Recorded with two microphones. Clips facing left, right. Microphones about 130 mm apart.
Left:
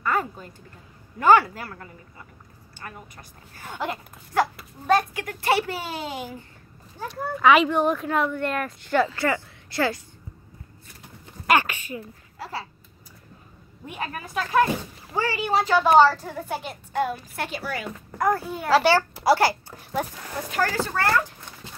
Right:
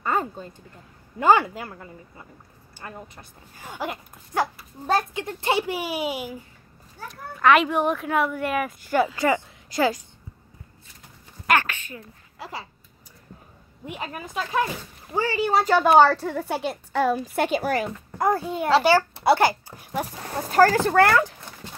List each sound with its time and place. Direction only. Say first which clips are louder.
0.0 s a woman's voice: even; 25° right (ahead or behind)
3.2 s a child's voice: even; 15° right (ahead or behind)
4.8 s a child's voice: left 2 dB; 30° right (ahead or behind); by 6.3 s 10° right (ahead or behind)
7.1 s a woman's voice: left 1 dB; centre (ahead or behind); by 10.0 s 15° right (ahead or behind)
11.4 s speech: left 1 dB; 10° left (ahead or behind)
13.8 s a woman's voice: left 1 dB; 20° right (ahead or behind); by 17.6 s 90° right
17.6 s speech: right 7 dB; 45° right (ahead or behind)
18.1 s a woman's voice: even; 25° right (ahead or behind)
20.3 s speech: right 8 dB; 40° right (ahead or behind); by 21.3 s 75° right (ahead or behind)